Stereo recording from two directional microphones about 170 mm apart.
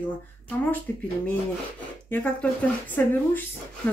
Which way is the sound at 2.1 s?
10° left (ahead or behind).